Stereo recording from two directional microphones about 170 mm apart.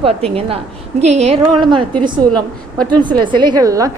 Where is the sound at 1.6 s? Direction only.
25° right (ahead or behind).